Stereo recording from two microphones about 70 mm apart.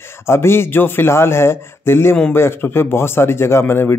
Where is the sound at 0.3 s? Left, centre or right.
Left.